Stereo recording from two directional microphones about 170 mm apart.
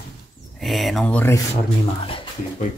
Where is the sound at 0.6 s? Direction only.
Centre (ahead or behind).